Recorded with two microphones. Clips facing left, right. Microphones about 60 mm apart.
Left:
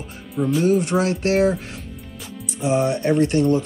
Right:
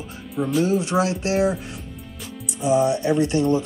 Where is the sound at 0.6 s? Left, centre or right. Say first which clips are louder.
Left 1 dB; left.